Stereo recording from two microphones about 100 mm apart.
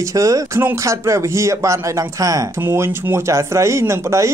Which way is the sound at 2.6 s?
20° right (ahead or behind).